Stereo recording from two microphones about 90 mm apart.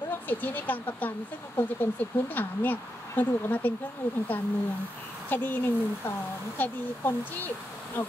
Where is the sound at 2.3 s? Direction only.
20° left (ahead or behind).